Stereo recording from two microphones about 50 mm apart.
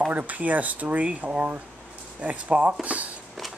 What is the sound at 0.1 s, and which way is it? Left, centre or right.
Speech, right.